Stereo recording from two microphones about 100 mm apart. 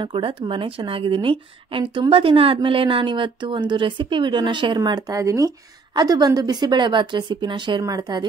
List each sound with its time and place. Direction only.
0.0 s a woman's voice: 60° right (ahead or behind)
7.8 s a woman's voice: 40° right (ahead or behind)